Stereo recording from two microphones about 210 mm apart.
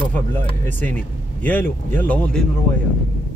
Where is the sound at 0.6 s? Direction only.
10° left (ahead or behind).